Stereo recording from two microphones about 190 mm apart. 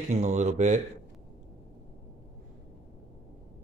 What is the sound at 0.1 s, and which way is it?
Speech, 35° right (ahead or behind).